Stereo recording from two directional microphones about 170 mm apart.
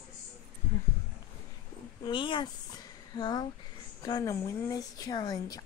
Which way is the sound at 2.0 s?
30° left (ahead or behind).